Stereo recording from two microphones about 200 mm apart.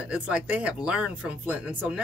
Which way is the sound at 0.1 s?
5° right (ahead or behind).